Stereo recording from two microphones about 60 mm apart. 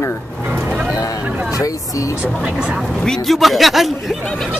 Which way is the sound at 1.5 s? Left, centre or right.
Left.